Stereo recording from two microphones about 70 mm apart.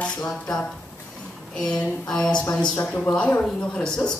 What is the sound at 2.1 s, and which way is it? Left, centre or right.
Speech, centre.